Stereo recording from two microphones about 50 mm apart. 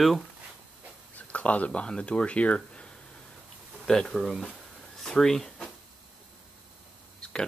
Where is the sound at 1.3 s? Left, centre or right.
Left.